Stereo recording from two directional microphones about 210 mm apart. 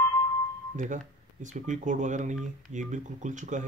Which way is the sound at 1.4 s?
35° right (ahead or behind).